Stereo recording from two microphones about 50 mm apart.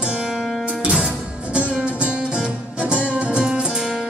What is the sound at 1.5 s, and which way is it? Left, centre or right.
Music, centre.